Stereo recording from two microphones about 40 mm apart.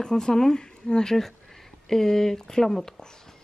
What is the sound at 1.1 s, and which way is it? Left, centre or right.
Speech, centre.